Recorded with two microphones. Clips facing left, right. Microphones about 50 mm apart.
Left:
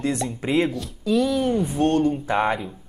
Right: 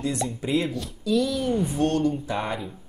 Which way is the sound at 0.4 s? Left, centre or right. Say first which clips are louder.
Left 4 dB; left.